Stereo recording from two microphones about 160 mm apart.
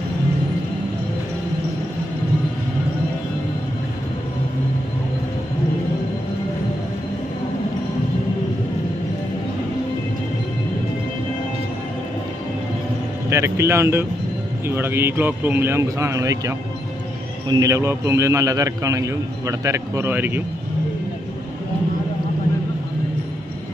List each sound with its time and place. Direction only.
13.3 s a man's voice: 15° right (ahead or behind)